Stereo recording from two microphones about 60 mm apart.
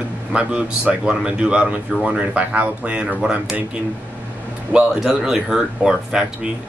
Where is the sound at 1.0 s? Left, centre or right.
Centre.